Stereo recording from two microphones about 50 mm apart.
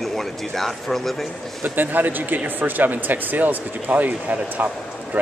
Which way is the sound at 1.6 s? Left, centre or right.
Right.